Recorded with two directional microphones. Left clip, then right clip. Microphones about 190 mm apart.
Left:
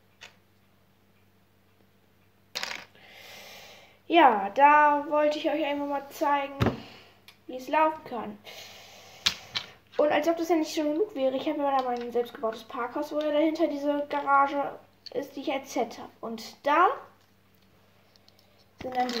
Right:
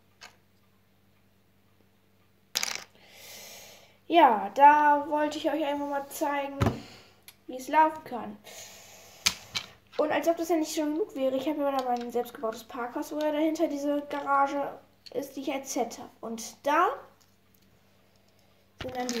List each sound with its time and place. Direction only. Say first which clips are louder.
2.5 s gasp: right 2 dB; 5° right (ahead or behind)
7.2 s a sound: left 2 dB; 10° right (ahead or behind)
9.7 s speech: left 4 dB; 5° left (ahead or behind)
11.9 s speech: left 1 dB; 20° right (ahead or behind)
12.5 s speech: left 3 dB; 5° right (ahead or behind)